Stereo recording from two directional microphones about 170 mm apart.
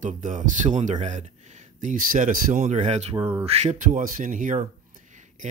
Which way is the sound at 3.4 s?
40° right (ahead or behind).